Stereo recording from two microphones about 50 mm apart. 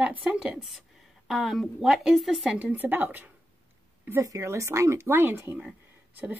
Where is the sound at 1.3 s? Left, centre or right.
Centre.